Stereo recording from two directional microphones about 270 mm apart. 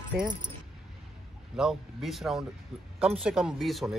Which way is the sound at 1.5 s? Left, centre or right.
Centre.